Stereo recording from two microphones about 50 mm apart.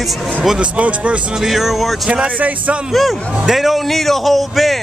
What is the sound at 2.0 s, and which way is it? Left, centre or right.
Speech, right.